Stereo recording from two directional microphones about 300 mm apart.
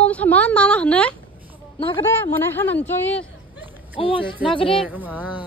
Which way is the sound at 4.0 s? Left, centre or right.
Centre.